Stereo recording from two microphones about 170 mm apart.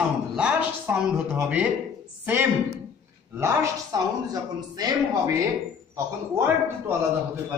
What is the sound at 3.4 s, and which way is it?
Speech, 20° right (ahead or behind).